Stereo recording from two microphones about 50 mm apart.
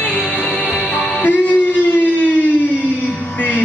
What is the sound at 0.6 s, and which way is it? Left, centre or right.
Music, left.